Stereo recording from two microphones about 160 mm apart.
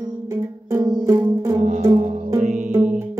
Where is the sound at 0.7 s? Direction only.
20° right (ahead or behind).